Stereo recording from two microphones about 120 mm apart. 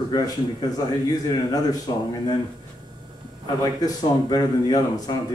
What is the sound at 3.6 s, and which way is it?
Speech, 30° left (ahead or behind).